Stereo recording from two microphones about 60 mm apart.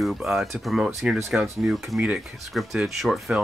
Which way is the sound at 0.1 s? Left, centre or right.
Centre.